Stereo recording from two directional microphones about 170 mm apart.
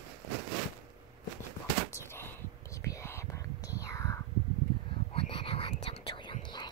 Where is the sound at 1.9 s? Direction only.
15° left (ahead or behind).